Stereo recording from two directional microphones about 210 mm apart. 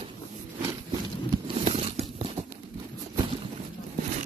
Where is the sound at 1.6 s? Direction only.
30° right (ahead or behind).